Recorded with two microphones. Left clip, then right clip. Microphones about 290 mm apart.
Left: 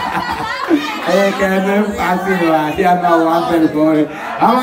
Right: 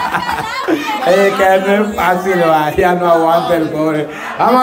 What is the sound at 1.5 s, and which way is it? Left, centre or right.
A man's voice, centre.